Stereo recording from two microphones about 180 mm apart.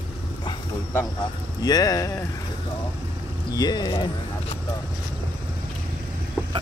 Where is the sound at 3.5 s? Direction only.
25° left (ahead or behind).